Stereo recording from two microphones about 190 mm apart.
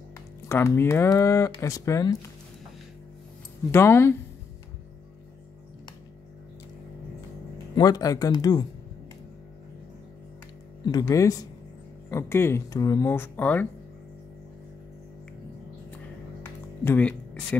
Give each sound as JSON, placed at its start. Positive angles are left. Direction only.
{"t": 0.5, "sound": "speech", "side_deg": 15}
{"t": 3.7, "sound": "speech", "side_deg": 15}
{"t": 7.7, "sound": "speech", "side_deg": 20}
{"t": 10.9, "sound": "speech", "side_deg": 20}
{"t": 16.8, "sound": "speech", "side_deg": 10}